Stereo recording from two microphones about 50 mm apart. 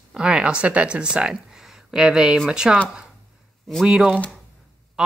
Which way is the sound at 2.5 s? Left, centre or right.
Centre.